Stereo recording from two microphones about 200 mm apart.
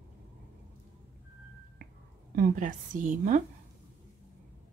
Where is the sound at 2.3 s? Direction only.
40° right (ahead or behind).